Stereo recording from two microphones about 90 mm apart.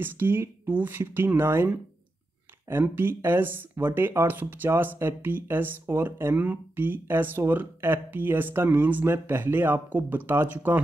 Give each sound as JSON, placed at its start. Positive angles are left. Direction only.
{"t": 0.0, "sound": "speech", "side_deg": -25}